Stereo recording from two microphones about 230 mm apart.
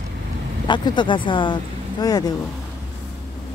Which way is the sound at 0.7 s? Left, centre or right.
Centre.